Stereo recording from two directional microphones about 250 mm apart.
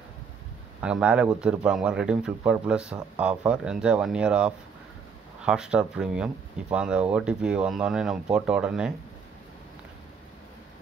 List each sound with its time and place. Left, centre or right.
0.7 s speech: centre